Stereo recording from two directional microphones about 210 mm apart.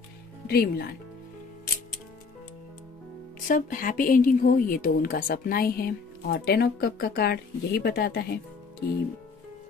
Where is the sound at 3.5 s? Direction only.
40° left (ahead or behind).